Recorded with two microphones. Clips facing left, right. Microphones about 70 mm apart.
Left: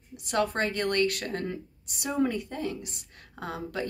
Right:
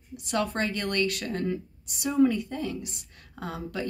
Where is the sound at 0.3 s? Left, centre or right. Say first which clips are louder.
Left 1 dB; left.